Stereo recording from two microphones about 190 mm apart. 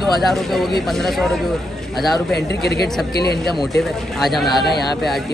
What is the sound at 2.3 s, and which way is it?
Speech, 60° left (ahead or behind).